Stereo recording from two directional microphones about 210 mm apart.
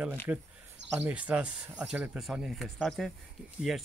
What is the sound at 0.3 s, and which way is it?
Speech, 10° right (ahead or behind).